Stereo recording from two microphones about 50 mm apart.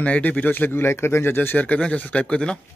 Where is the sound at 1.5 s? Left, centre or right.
Left.